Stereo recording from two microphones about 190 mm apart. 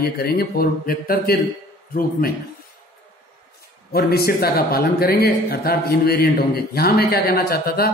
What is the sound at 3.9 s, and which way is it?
A man's voice, 55° left (ahead or behind).